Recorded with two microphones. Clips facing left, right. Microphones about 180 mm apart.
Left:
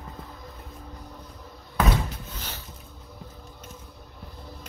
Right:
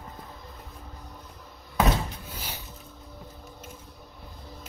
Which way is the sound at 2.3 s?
10° right (ahead or behind).